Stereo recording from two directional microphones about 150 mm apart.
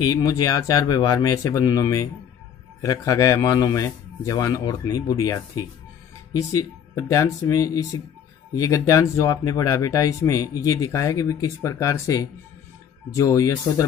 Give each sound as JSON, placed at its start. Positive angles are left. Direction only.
{"t": 0.0, "sound": "speech", "side_deg": 25}